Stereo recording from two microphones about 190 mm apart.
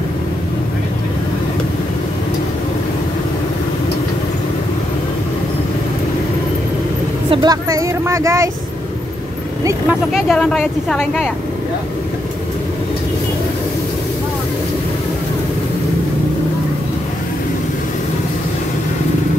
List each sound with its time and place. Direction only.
7.2 s speech: 20° right (ahead or behind)
9.7 s speech: 5° right (ahead or behind)